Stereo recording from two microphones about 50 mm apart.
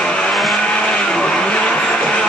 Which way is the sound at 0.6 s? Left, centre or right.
Centre.